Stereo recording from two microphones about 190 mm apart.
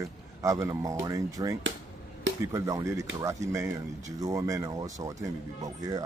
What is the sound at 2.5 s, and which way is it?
Speech, 15° right (ahead or behind).